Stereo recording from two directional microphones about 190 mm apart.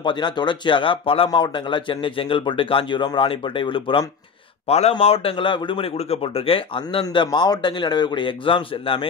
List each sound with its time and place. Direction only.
0.0 s a man's voice: 25° left (ahead or behind)